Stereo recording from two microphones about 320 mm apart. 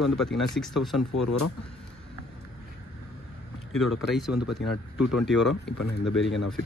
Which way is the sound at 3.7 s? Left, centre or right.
Centre.